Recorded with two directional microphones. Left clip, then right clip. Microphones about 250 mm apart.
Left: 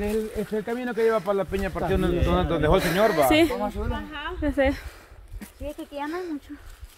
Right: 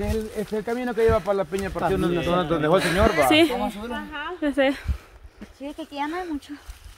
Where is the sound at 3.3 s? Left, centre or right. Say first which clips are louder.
Right 2 dB; centre.